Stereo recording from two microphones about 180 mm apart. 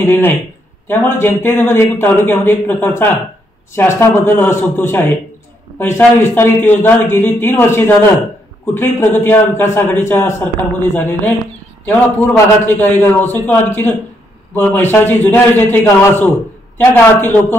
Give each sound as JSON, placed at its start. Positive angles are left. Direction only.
{"t": 0.0, "sound": "a man's voice", "side_deg": 15}